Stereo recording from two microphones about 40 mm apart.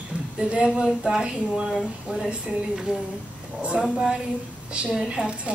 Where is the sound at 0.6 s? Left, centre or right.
Centre.